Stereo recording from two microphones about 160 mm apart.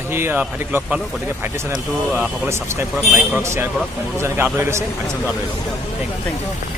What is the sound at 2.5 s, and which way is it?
Speech, 15° right (ahead or behind).